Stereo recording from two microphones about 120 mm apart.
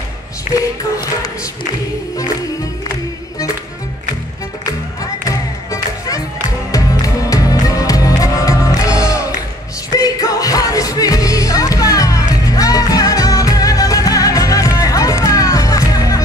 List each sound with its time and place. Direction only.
0.5 s singing: 90° left
5.3 s music: 30° left (ahead or behind)